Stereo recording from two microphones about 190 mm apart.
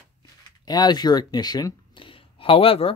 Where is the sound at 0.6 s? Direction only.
20° left (ahead or behind).